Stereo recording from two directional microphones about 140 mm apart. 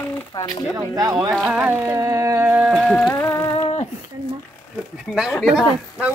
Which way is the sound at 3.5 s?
40° left (ahead or behind).